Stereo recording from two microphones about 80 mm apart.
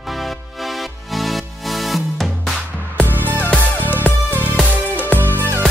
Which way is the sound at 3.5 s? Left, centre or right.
Left.